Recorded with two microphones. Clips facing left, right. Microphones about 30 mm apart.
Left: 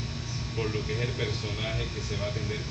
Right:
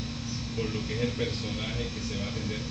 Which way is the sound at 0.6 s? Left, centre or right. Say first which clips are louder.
Even; centre.